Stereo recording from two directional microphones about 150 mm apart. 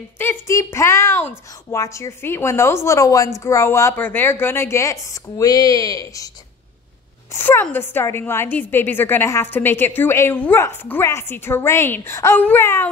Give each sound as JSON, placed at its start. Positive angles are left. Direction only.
{"t": 0.2, "sound": "a woman's voice", "side_deg": 15}
{"t": 7.3, "sound": "a woman's voice", "side_deg": 15}